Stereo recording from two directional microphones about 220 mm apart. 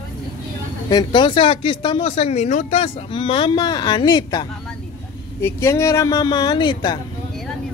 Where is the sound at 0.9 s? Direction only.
20° left (ahead or behind).